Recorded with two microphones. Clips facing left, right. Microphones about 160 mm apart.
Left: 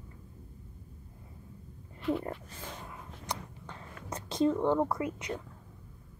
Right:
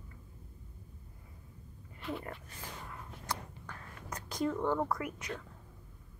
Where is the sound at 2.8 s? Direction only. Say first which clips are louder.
Right 1 dB; 20° left (ahead or behind).